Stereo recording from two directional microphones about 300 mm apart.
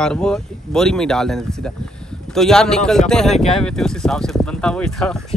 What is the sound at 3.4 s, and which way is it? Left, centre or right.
Speech, centre.